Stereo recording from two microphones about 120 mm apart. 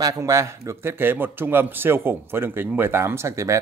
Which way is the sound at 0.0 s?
25° right (ahead or behind).